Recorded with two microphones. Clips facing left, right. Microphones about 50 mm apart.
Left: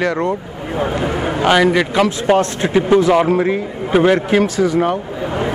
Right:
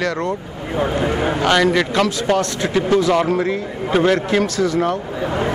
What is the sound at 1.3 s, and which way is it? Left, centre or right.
Speech, centre.